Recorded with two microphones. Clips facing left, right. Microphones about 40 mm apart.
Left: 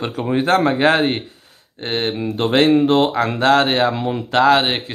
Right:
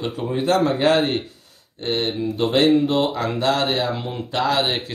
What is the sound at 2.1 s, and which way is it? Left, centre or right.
Speech, left.